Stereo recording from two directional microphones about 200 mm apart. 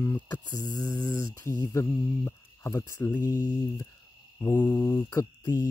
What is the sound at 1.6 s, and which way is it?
Cricket, 15° left (ahead or behind).